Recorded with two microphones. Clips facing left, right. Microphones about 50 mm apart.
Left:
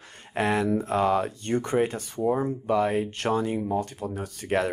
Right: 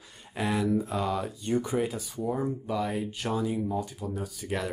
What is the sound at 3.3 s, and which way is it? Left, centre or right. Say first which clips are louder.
Speech: left 3 dB; left.